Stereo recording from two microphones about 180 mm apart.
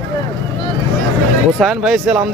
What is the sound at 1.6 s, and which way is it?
Speech, centre (ahead or behind).